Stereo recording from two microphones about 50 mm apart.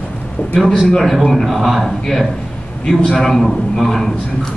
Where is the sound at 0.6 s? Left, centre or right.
Centre.